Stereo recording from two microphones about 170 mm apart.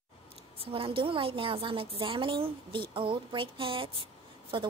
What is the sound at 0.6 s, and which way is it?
A woman's voice, 30° right (ahead or behind).